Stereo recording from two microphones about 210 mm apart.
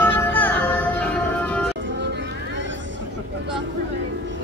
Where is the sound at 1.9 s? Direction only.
55° right (ahead or behind).